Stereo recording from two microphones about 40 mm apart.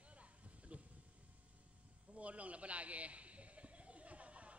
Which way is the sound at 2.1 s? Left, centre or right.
Right.